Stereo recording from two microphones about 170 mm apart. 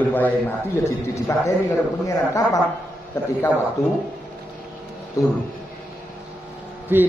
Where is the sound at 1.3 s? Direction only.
15° left (ahead or behind).